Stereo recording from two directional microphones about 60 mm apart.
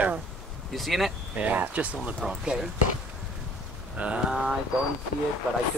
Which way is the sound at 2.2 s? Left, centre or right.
Centre.